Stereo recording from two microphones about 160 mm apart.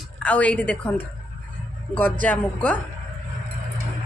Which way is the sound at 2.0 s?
10° left (ahead or behind).